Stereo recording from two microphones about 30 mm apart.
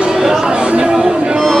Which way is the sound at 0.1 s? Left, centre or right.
Centre.